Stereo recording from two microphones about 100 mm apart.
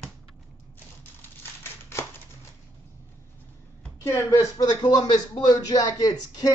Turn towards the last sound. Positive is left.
turn(degrees=40)  # may be behind; listen again after turning